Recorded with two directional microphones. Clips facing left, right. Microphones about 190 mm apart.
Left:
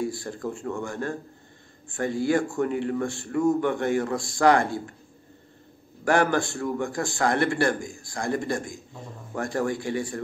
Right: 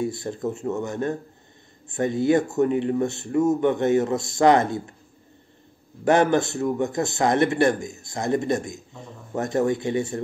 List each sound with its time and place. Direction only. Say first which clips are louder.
0.0 s speech: right 3 dB; 20° right (ahead or behind)
6.0 s speech: right 4 dB; 20° right (ahead or behind)